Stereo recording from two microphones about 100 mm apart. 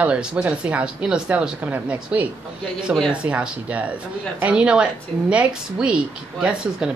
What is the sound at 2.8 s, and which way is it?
A woman's voice, 5° right (ahead or behind).